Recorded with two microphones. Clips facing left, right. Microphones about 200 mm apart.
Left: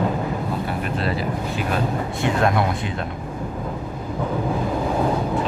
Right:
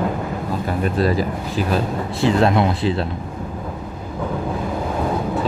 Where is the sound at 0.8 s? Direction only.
40° right (ahead or behind).